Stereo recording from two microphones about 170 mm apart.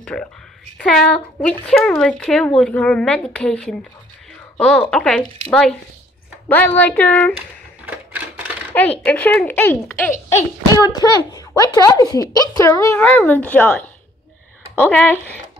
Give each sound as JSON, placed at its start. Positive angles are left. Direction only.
{"t": 0.0, "sound": "a woman's voice", "side_deg": 5}
{"t": 7.8, "sound": "typewriter", "side_deg": -10}
{"t": 9.0, "sound": "speech", "side_deg": 10}
{"t": 11.0, "sound": "a woman's voice", "side_deg": 25}